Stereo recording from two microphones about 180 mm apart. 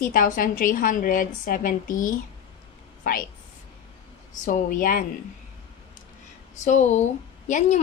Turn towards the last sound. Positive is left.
turn(degrees=40)  # may be behind; listen again after turning